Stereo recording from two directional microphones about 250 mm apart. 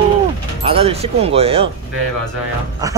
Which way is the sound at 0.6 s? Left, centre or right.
Right.